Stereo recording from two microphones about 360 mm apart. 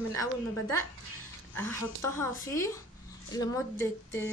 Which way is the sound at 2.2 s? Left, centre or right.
Centre.